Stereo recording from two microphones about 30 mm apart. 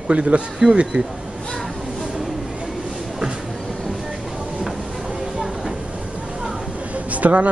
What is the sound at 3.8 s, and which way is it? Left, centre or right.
Train, right.